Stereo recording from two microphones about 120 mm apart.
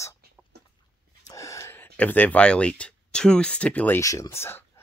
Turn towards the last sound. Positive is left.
turn(degrees=20)  # may be behind; listen again after turning